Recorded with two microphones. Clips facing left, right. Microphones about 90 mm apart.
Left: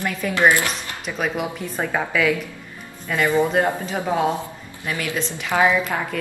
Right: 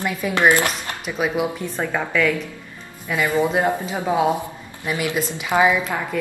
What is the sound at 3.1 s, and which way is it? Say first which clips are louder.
Speech: left 1 dB; 5° right (ahead or behind).